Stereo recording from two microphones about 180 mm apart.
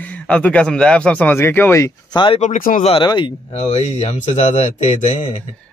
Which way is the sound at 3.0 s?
25° left (ahead or behind).